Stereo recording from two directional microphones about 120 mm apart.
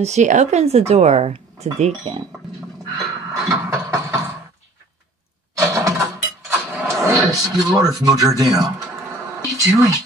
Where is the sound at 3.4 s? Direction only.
25° right (ahead or behind).